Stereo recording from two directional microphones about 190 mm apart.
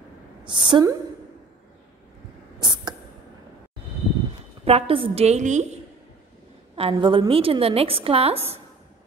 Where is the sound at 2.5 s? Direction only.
25° right (ahead or behind).